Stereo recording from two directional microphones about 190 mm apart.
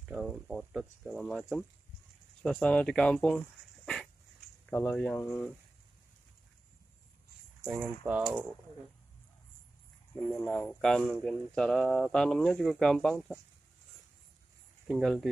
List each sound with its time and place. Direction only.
0.1 s speech: centre (ahead or behind)
2.4 s speech: 5° left (ahead or behind)
7.6 s speech: centre (ahead or behind)
10.3 s speech: 5° left (ahead or behind)
14.9 s speech: centre (ahead or behind)